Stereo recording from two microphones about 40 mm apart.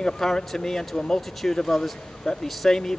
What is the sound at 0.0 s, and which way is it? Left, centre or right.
A man's voice, centre.